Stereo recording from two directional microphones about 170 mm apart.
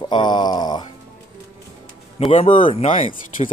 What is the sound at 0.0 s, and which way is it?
Groan, 25° left (ahead or behind).